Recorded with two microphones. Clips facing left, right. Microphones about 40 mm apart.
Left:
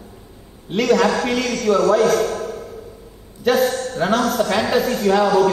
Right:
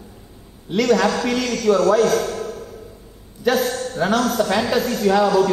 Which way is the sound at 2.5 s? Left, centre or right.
Left.